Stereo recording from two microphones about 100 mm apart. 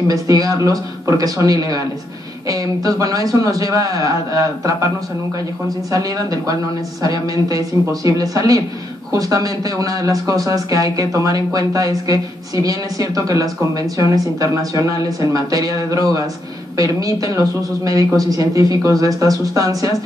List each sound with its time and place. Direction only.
0.1 s speech: 35° right (ahead or behind)